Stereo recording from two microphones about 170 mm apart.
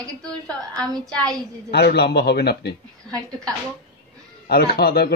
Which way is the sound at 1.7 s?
75° left (ahead or behind).